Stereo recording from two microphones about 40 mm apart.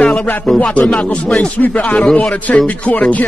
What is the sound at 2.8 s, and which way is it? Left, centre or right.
Speech, left.